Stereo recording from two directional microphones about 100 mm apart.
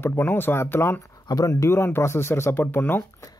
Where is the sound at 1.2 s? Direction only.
40° left (ahead or behind); by 3.2 s 20° left (ahead or behind).